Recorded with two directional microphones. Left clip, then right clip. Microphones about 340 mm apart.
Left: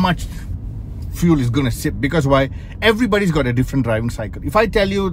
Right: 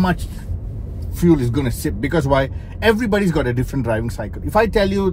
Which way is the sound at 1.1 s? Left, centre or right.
Left.